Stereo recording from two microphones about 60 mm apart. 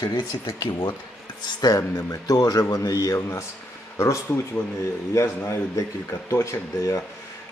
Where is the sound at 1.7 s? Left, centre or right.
Left.